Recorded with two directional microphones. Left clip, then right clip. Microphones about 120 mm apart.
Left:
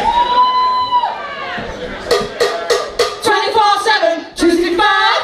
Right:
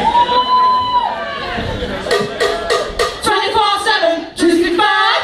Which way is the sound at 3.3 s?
50° left (ahead or behind).